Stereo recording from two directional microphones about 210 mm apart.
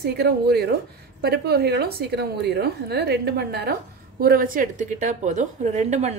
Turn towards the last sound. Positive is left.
turn(degrees=-35)  # may be behind; listen again after turning